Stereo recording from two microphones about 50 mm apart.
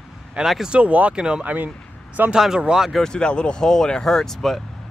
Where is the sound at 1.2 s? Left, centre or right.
Centre.